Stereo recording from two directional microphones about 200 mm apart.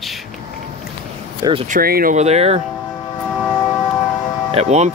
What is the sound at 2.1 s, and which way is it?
Speech, 30° right (ahead or behind).